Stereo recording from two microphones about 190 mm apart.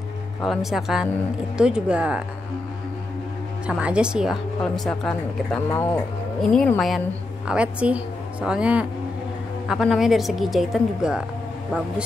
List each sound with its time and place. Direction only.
0.4 s speech: centre (ahead or behind)
3.6 s speech: 5° right (ahead or behind)
5.7 s speech: 15° left (ahead or behind); by 11.2 s 5° right (ahead or behind)